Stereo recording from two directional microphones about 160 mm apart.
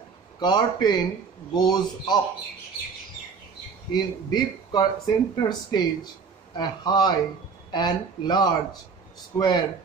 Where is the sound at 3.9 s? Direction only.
25° left (ahead or behind).